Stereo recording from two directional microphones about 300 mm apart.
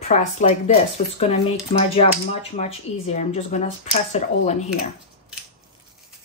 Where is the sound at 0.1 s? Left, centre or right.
Left.